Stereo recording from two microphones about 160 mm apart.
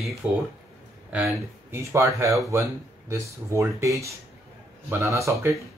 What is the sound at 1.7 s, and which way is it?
Speech, 15° right (ahead or behind).